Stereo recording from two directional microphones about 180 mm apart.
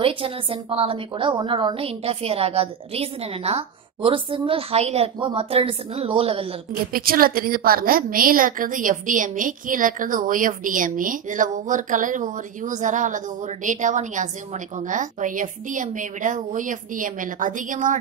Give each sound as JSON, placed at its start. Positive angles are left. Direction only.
{"t": 0.0, "sound": "a woman's voice", "side_deg": -30}
{"t": 6.9, "sound": "a woman's voice", "side_deg": -55}